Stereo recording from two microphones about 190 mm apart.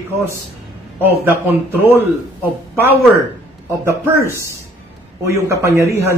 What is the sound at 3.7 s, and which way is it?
Speech, 15° right (ahead or behind).